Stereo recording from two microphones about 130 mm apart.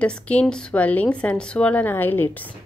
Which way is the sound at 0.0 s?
10° left (ahead or behind).